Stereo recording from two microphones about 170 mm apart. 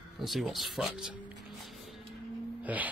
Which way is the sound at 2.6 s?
10° right (ahead or behind).